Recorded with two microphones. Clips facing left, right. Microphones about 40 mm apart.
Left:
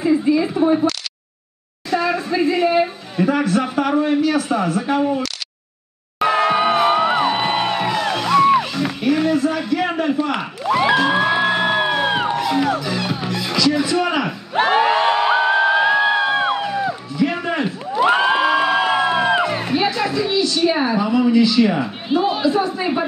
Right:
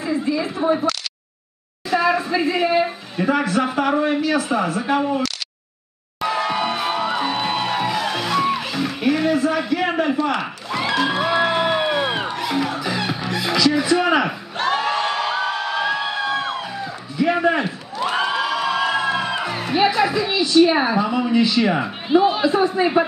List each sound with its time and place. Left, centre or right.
0.0 s a sound: centre
0.6 s speech: centre
6.2 s music: left
7.9 s music: centre
10.6 s music: centre
12.4 s music: centre
14.5 s crowd: left
17.2 s a sound: centre
17.9 s crowd: left
19.7 s a sound: centre
22.2 s a man's voice: centre